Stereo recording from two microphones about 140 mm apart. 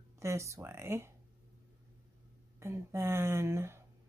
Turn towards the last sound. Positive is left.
turn(degrees=-20)  # may be behind; listen again after turning